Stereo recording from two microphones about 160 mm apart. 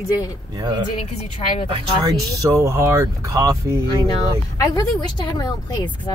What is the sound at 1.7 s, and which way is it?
Speech, 25° right (ahead or behind).